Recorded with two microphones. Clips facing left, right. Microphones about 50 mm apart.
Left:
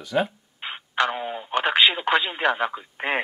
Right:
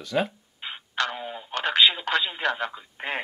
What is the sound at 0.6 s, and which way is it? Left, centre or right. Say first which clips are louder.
Telephone: left 4 dB; left.